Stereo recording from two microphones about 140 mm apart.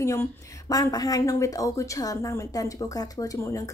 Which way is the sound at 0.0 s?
20° left (ahead or behind).